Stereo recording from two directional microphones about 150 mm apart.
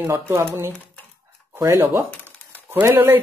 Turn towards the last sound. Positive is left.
turn(degrees=-15)  # may be behind; listen again after turning